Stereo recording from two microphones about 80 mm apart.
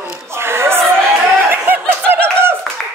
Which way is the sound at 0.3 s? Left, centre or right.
Right.